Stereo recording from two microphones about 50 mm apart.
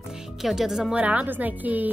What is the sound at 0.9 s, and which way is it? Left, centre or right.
Speech, right.